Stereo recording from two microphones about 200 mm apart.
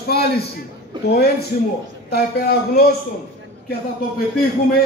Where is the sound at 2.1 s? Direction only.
50° left (ahead or behind).